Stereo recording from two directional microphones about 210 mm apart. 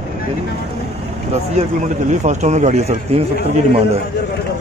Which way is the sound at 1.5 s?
35° right (ahead or behind).